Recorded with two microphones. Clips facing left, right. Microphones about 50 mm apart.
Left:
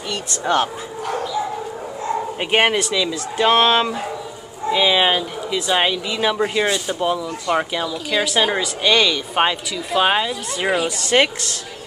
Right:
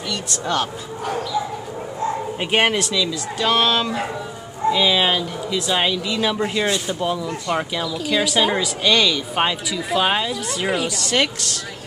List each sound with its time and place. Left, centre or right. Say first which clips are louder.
0.1 s speech: left 4 dB; left
2.3 s speech: left 2 dB; centre
2.9 s speech: left 1 dB; left
4.6 s speech: left 1 dB; centre
9.7 s speech: right 2 dB; centre
9.9 s speech: left 3 dB; centre
11.0 s speech: left 6 dB; left